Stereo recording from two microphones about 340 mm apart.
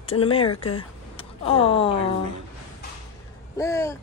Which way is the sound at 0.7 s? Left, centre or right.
Centre.